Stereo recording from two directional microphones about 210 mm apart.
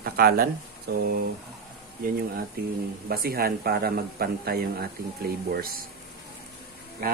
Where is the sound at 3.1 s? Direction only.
45° right (ahead or behind).